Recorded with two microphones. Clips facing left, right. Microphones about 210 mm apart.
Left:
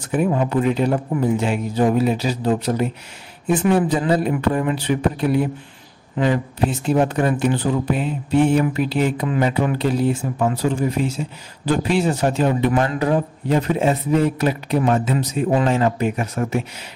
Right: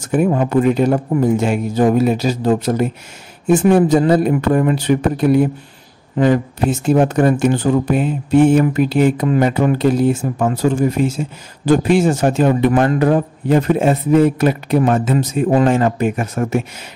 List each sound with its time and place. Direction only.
0.0 s speech: 45° right (ahead or behind)